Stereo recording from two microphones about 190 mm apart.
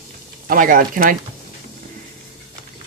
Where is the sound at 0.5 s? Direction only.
45° right (ahead or behind).